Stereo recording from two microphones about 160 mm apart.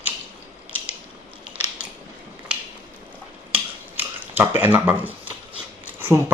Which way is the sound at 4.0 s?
15° right (ahead or behind).